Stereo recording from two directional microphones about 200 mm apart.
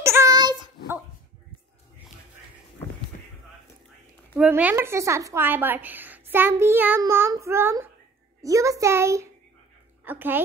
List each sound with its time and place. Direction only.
0.0 s dog: 15° right (ahead or behind)
4.4 s a woman's voice: 5° right (ahead or behind)